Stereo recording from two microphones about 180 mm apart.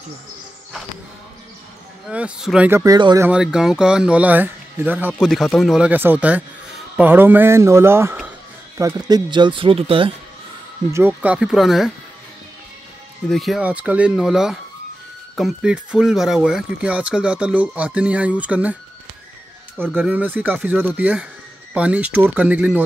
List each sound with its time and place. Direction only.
2.0 s speech: 5° right (ahead or behind)
2.8 s speech: 20° right (ahead or behind)
3.3 s speech: 5° right (ahead or behind)
5.2 s speech: centre (ahead or behind); by 10.1 s 30° right (ahead or behind)
10.9 s speech: 15° right (ahead or behind)
13.3 s speech: centre (ahead or behind)
20.0 s speech: 10° right (ahead or behind)